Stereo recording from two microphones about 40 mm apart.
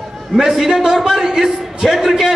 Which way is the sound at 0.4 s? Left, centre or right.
Centre.